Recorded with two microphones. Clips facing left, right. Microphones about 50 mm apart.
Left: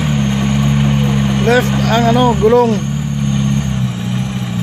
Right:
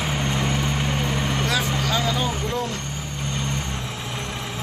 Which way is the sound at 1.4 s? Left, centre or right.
Left.